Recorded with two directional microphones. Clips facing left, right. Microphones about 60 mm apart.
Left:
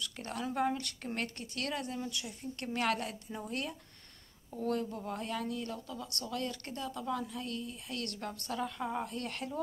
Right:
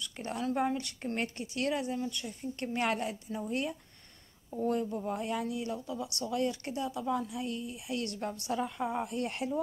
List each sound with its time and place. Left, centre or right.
0.0 s a woman's voice: centre
4.5 s speech: centre
9.2 s speech: centre